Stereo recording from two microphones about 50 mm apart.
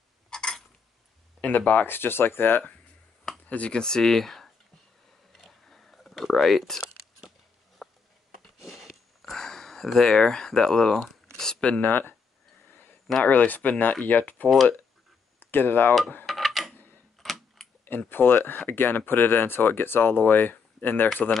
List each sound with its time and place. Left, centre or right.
0.3 s a sound: centre
1.4 s speech: left
1.9 s speech: left
3.4 s speech: left
3.8 s speech: centre
5.7 s a sound: centre
11.8 s speech: left
13.2 s speech: left
14.5 s speech: centre
15.5 s speech: left
16.3 s a sound: centre
17.2 s typing: centre
17.8 s speech: left